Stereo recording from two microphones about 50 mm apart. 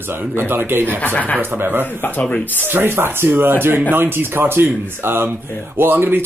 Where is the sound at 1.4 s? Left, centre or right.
Right.